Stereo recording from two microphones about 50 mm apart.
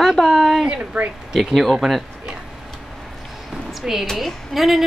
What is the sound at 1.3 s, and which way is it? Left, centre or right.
Speech, centre.